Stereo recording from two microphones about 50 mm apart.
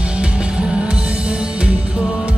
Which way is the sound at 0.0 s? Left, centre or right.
Right.